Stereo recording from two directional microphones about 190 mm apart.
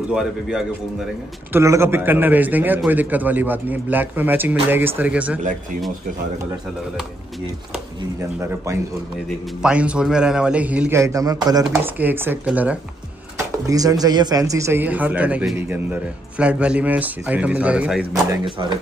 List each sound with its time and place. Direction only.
0.1 s a man's voice: centre (ahead or behind)
1.5 s a man's voice: 15° right (ahead or behind)
8.4 s a man's voice: 15° right (ahead or behind)
11.6 s a man's voice: 10° right (ahead or behind)
13.7 s a man's voice: 20° right (ahead or behind)
18.1 s speech: 20° right (ahead or behind)